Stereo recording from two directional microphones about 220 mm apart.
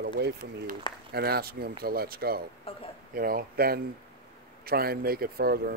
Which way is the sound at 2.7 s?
25° left (ahead or behind).